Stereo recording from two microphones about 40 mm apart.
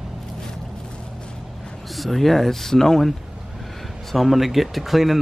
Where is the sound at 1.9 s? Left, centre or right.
Centre.